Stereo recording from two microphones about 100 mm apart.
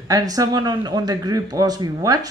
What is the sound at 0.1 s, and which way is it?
Speech, 40° right (ahead or behind).